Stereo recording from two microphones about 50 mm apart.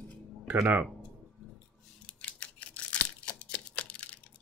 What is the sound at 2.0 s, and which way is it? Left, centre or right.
Scissors, left.